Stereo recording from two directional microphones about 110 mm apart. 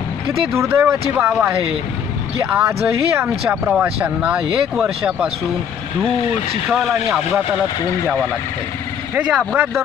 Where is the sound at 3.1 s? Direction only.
20° right (ahead or behind).